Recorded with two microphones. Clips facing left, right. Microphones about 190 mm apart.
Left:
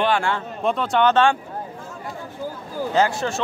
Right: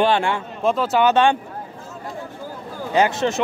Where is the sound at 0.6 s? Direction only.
Centre (ahead or behind).